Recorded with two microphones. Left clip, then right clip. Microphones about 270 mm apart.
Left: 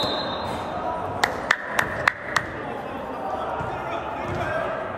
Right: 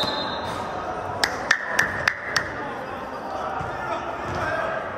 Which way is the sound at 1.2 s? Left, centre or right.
Left.